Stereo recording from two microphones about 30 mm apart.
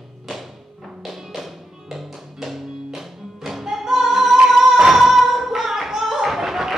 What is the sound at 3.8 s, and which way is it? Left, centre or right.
Female singing, centre.